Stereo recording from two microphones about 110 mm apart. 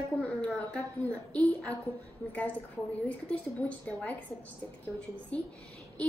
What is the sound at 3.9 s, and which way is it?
Speech, 15° left (ahead or behind).